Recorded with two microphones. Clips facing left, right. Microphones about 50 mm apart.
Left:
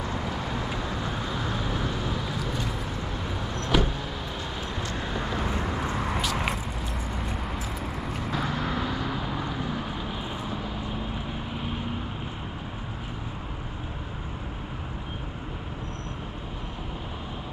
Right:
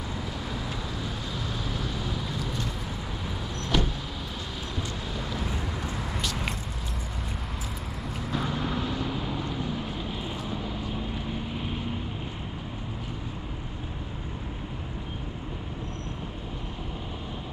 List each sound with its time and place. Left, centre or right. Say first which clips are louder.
0.2 s vehicle: left 3 dB; centre
2.1 s vehicle: left 2 dB; centre
5.1 s vehicle: left 5 dB; centre
8.3 s vehicle: even; centre